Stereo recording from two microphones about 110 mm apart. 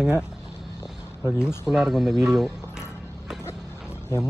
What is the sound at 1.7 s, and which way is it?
Music, 5° right (ahead or behind).